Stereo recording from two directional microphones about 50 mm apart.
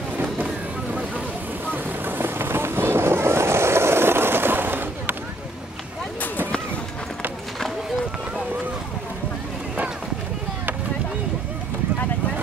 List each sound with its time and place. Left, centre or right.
2.0 s vehicle: right